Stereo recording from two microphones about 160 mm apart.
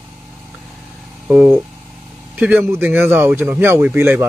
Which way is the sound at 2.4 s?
10° right (ahead or behind).